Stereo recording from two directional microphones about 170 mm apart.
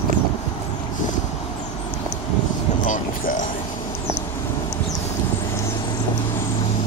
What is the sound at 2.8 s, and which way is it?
Speech, 50° left (ahead or behind).